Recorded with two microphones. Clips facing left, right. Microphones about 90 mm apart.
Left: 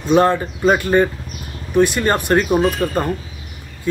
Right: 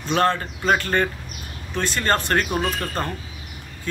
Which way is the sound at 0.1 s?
15° left (ahead or behind).